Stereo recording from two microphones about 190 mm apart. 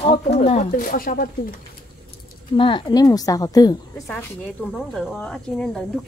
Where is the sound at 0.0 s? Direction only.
35° left (ahead or behind).